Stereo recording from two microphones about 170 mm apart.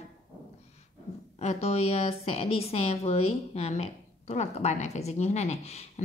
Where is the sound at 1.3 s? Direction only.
40° left (ahead or behind).